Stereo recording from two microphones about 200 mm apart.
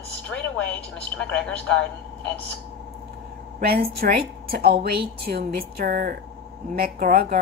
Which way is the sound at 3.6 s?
50° right (ahead or behind).